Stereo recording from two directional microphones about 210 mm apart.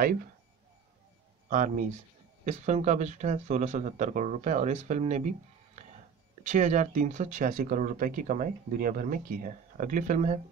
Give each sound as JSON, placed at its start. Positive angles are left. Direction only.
{"t": 1.5, "sound": "speech", "side_deg": -40}
{"t": 6.4, "sound": "speech", "side_deg": -35}